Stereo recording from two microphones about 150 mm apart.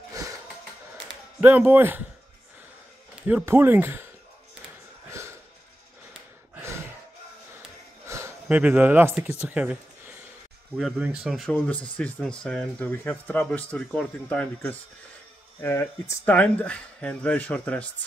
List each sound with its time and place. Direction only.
1.4 s speech: 10° right (ahead or behind)
3.2 s a sound: 5° right (ahead or behind)
3.4 s speech: 15° right (ahead or behind)
6.5 s a sound: 15° right (ahead or behind)
8.1 s speech: 15° right (ahead or behind)
11.5 s speech: 10° left (ahead or behind)